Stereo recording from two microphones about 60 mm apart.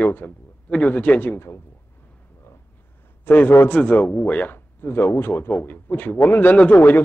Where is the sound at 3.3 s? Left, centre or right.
Left.